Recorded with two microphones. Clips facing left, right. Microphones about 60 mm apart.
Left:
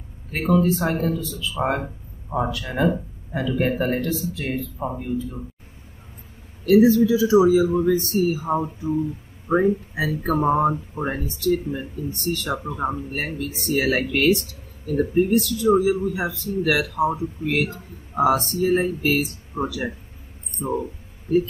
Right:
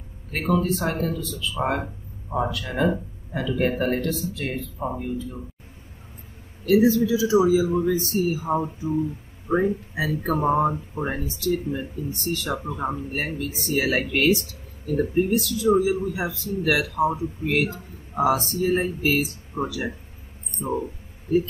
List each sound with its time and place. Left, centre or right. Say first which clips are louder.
0.3 s speech: left 3 dB; centre
6.6 s speech: left 3 dB; centre
9.5 s speech: left 2 dB; centre
9.9 s speech: left 2 dB; centre
19.6 s speech: left 1 dB; left
20.6 s a sound: left 1 dB; left